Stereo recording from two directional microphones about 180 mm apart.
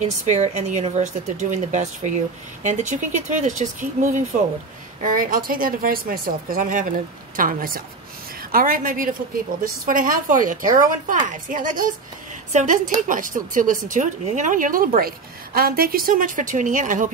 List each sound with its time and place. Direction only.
0.0 s speech: 40° right (ahead or behind)